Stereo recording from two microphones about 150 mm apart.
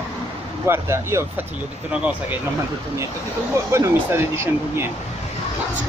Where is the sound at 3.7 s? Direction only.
20° right (ahead or behind).